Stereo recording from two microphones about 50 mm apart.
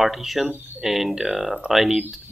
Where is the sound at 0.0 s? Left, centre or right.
Centre.